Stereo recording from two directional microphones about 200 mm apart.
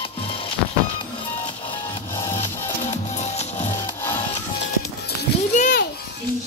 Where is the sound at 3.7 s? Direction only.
15° left (ahead or behind).